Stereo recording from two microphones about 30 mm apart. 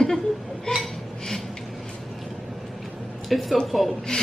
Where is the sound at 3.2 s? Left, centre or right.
Centre.